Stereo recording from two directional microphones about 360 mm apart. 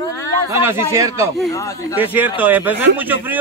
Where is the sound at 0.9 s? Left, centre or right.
Centre.